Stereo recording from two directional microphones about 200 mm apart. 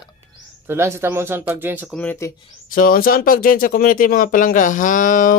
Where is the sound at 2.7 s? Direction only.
45° left (ahead or behind).